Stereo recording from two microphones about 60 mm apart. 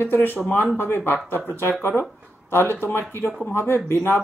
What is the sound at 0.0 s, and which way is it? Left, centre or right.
Speech, left.